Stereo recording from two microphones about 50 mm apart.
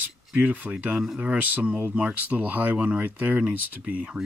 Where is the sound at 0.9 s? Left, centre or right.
Centre.